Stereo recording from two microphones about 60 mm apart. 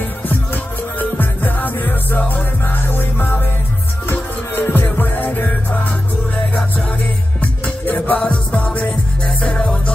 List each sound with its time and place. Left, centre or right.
0.9 s music: left
7.6 s music: left